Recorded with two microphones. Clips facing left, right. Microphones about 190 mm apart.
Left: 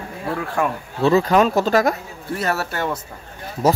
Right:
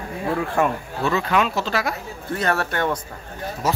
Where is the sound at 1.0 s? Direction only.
35° left (ahead or behind).